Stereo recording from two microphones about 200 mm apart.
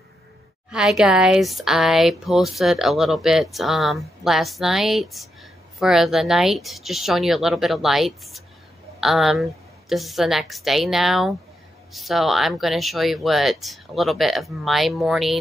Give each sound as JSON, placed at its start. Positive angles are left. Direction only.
{"t": 0.7, "sound": "speech", "side_deg": -5}